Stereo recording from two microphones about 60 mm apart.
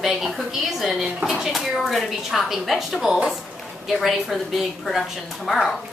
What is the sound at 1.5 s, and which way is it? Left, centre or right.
A woman's voice, centre.